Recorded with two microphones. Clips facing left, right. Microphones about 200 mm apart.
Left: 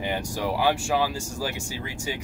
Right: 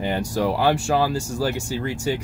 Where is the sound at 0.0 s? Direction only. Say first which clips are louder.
Right 5 dB; 45° right (ahead or behind).